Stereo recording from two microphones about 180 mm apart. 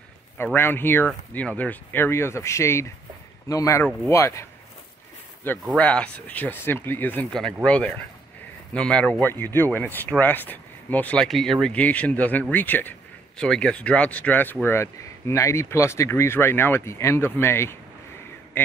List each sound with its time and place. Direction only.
0.4 s speech: 10° left (ahead or behind)